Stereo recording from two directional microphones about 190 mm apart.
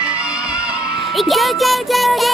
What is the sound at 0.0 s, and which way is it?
Music, 5° right (ahead or behind).